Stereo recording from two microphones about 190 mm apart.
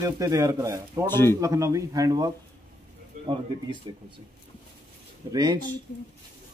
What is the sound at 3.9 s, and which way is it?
Speech, 25° right (ahead or behind).